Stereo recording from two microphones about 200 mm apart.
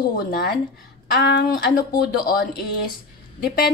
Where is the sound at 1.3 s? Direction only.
50° left (ahead or behind).